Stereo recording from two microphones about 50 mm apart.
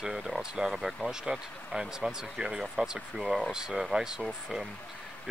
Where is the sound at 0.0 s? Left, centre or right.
Centre.